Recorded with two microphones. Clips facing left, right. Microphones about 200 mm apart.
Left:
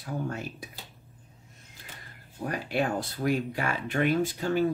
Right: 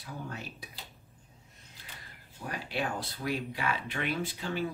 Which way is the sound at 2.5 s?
50° left (ahead or behind).